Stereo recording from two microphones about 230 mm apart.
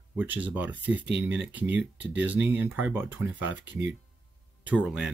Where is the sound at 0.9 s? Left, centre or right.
Right.